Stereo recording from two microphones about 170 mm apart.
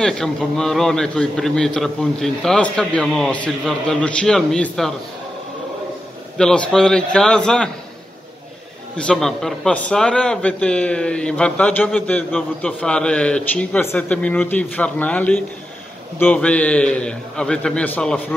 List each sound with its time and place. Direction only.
0.0 s a man's voice: 5° left (ahead or behind)
6.3 s a man's voice: 5° left (ahead or behind)
8.9 s a man's voice: 5° left (ahead or behind)